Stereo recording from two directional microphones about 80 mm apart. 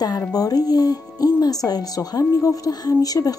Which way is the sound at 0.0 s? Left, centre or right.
Left.